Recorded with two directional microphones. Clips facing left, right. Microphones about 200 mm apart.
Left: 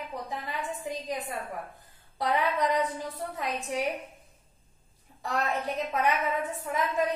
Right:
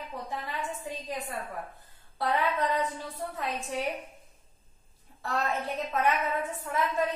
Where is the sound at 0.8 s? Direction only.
15° left (ahead or behind).